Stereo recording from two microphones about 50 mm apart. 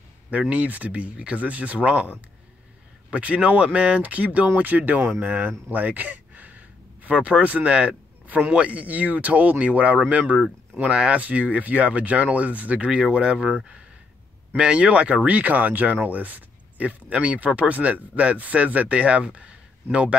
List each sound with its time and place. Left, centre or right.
0.3 s speech: right
5.7 s a sound: right
8.5 s speech: right
14.6 s speech: right